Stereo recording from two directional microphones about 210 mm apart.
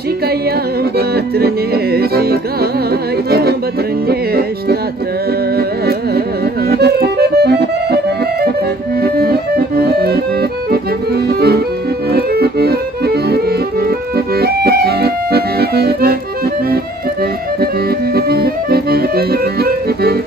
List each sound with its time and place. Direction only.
0.9 s music: 50° right (ahead or behind)
10.7 s accordion: 50° right (ahead or behind)
17.6 s accordion: 50° right (ahead or behind)